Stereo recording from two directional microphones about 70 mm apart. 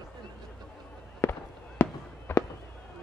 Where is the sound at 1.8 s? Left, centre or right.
Left.